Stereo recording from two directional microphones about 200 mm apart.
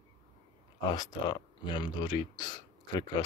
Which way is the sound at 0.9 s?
20° left (ahead or behind).